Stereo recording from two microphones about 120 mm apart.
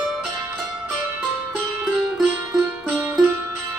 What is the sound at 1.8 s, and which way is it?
Music, 5° right (ahead or behind).